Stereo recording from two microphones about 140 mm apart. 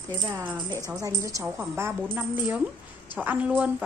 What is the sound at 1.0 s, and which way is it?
Speech, 25° right (ahead or behind).